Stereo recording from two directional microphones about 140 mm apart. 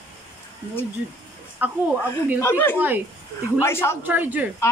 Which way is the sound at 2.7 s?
15° right (ahead or behind).